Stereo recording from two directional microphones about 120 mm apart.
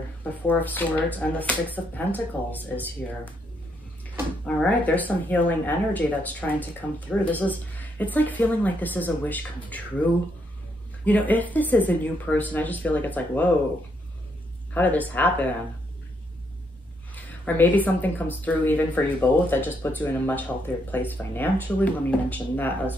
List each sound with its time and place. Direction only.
0.5 s speech: 15° left (ahead or behind)
4.6 s speech: 10° left (ahead or behind)
11.1 s speech: 15° left (ahead or behind)
14.7 s speech: 15° left (ahead or behind)
17.1 s speech: 15° left (ahead or behind)